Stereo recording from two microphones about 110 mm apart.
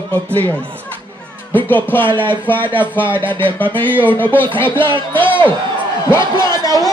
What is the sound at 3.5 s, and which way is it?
Speech, 15° left (ahead or behind).